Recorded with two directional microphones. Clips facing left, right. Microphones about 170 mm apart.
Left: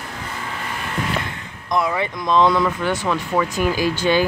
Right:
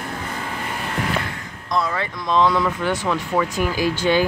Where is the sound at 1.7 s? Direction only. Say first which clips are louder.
Left 2 dB; 15° left (ahead or behind).